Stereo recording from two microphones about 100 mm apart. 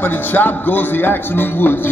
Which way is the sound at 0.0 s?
20° left (ahead or behind).